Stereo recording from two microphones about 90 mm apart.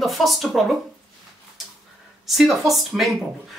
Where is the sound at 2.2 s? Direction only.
5° right (ahead or behind).